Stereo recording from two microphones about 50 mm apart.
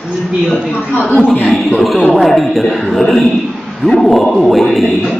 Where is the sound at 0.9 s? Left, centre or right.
Left.